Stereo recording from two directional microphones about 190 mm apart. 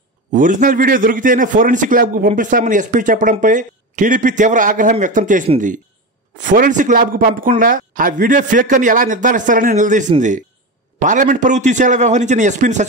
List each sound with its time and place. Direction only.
0.3 s a man's voice: 45° right (ahead or behind)